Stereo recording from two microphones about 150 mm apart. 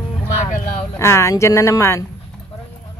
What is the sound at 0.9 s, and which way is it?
Speech, 20° left (ahead or behind).